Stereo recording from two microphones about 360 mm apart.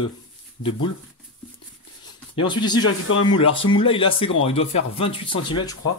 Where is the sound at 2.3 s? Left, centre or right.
Centre.